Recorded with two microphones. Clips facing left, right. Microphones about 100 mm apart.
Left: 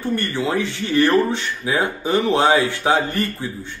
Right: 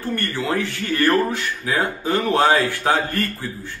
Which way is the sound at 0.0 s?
20° left (ahead or behind).